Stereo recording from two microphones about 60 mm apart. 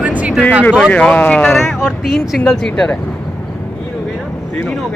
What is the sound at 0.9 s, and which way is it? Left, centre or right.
Speech, left.